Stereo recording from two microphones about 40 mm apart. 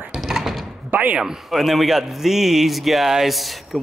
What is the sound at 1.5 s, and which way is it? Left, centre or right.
Speech, centre.